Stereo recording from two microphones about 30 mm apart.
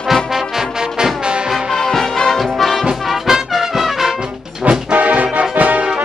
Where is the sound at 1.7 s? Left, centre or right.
Centre.